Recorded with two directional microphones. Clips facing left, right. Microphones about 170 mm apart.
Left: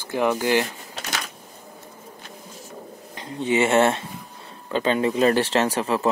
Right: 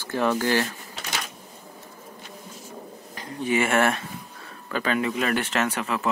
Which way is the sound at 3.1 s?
25° left (ahead or behind).